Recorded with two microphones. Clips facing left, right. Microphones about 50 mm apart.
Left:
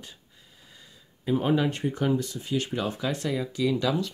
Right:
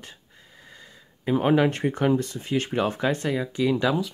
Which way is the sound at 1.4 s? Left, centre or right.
Right.